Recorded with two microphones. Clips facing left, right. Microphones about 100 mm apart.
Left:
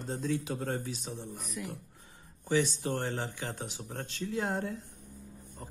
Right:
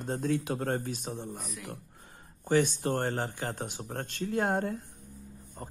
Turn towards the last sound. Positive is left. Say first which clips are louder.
# right 3 dB
turn(degrees=-40)  # may be behind; listen again after turning